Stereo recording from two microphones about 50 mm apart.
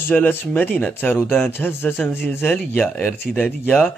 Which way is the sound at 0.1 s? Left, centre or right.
Centre.